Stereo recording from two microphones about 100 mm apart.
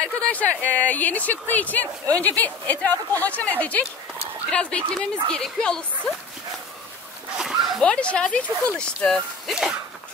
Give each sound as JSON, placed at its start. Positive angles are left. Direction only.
{"t": 0.0, "sound": "speech", "side_deg": 10}
{"t": 7.8, "sound": "speech", "side_deg": 10}
{"t": 9.5, "sound": "a sound", "side_deg": -5}